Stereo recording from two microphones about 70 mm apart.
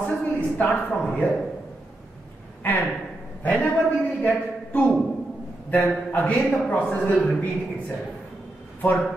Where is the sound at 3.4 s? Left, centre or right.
Left.